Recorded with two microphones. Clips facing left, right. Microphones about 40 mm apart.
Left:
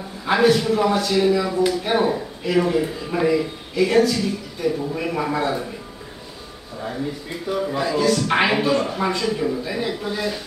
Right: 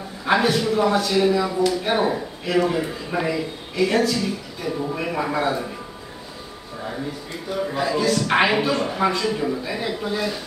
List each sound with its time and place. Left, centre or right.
0.2 s a man's voice: centre
7.7 s a man's voice: centre